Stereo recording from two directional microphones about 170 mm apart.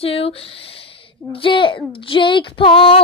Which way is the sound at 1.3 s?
30° left (ahead or behind).